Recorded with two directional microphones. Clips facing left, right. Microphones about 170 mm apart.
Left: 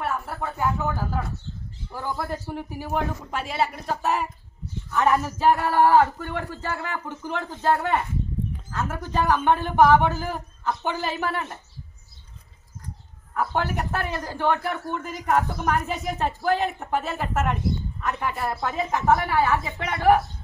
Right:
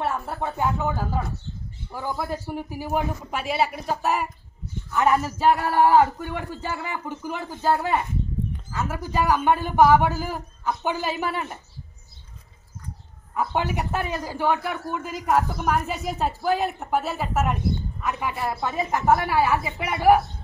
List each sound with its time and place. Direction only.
0.0 s a man's voice: 25° right (ahead or behind)
13.3 s a man's voice: 15° right (ahead or behind)